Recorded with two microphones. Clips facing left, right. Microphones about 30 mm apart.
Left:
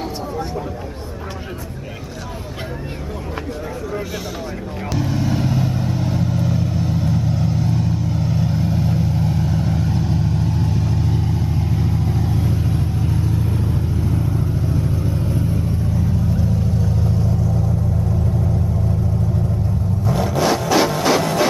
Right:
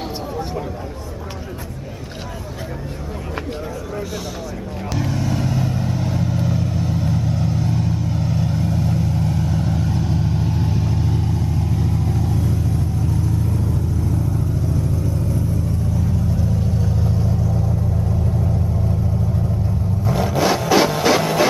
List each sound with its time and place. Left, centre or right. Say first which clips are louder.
4.9 s vehicle: left 2 dB; centre
12.6 s vehicle: left 1 dB; left
20.1 s music: even; centre